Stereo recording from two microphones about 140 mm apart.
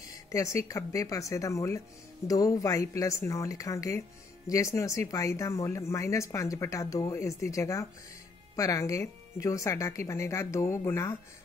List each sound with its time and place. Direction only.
0.3 s speech: 25° left (ahead or behind)